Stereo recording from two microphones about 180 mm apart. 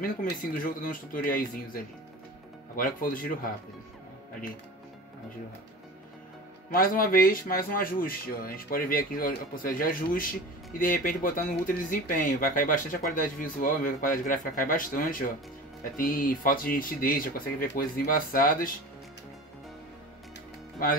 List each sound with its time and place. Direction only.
0.0 s a man's voice: 50° left (ahead or behind)
6.7 s a man's voice: 50° left (ahead or behind)